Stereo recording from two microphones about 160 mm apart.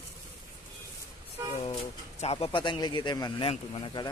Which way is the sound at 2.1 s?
40° left (ahead or behind).